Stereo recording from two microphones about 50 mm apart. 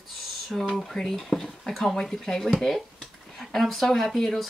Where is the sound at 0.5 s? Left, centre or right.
Centre.